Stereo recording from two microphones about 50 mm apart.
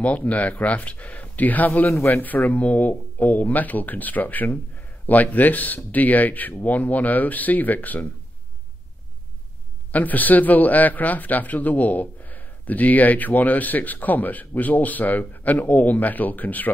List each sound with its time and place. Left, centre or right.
0.0 s a man's voice: left
1.9 s a man's voice: left
2.1 s a man's voice: left
9.8 s a man's voice: left